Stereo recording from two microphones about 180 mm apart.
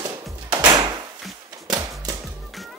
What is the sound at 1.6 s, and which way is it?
Music, 20° right (ahead or behind).